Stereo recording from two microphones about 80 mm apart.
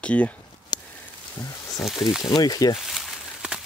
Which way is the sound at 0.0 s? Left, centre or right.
Centre.